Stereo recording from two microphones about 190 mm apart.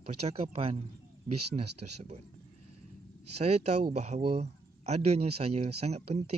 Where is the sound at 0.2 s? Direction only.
35° right (ahead or behind).